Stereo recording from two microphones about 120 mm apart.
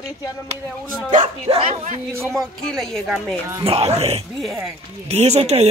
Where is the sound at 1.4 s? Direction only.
60° right (ahead or behind).